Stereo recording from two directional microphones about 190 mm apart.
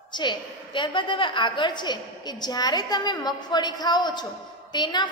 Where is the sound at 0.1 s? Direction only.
25° left (ahead or behind).